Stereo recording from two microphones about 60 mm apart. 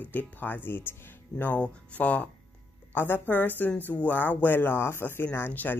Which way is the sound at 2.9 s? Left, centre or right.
Left.